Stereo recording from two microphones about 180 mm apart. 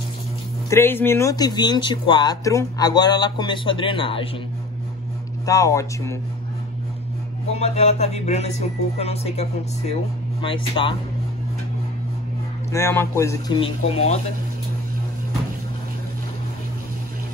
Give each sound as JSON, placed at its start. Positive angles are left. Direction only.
{"t": 0.7, "sound": "speech", "side_deg": 15}
{"t": 5.4, "sound": "speech", "side_deg": 20}
{"t": 7.5, "sound": "speech", "side_deg": 35}
{"t": 12.7, "sound": "speech", "side_deg": 15}
{"t": 13.6, "sound": "speech", "side_deg": 35}